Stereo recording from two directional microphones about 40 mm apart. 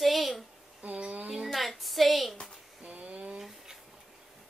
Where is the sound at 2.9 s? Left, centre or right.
Right.